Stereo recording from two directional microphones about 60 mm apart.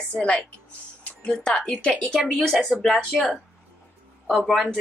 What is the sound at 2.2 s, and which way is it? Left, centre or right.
Speech, centre.